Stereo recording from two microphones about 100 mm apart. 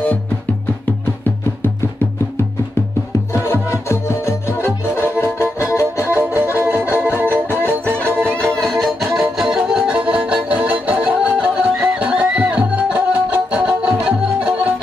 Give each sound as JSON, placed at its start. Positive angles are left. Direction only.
{"t": 3.4, "sound": "music", "side_deg": 25}
{"t": 6.0, "sound": "music", "side_deg": -20}
{"t": 8.4, "sound": "music", "side_deg": 5}